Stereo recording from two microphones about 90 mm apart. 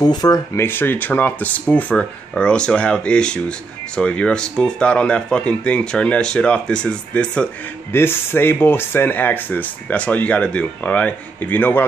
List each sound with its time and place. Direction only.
0.0 s speech: 45° left (ahead or behind)
0.6 s speech: 25° left (ahead or behind)
7.9 s speech: 25° left (ahead or behind)